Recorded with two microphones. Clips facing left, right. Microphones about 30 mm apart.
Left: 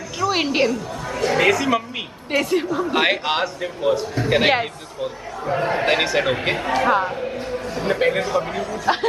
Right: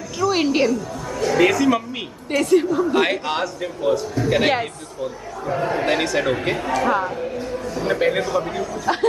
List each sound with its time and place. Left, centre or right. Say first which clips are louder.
0.2 s a woman's voice: right 1 dB; centre
1.1 s chatter: even; left
1.4 s a woman's voice: right 2 dB; centre
2.9 s speech: even; left
7.9 s a woman's voice: even; centre
8.2 s speech: even; centre